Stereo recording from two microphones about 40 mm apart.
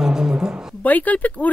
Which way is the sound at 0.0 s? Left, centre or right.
Centre.